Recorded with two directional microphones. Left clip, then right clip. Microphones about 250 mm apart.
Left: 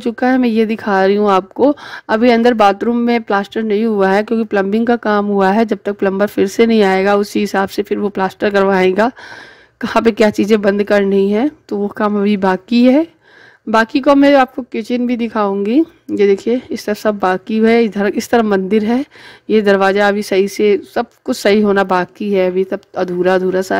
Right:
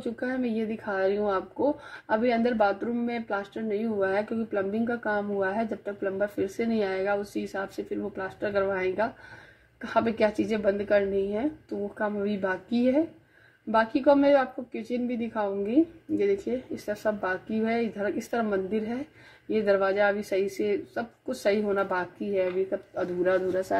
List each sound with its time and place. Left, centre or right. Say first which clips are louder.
0.0 s speech: left 16 dB; left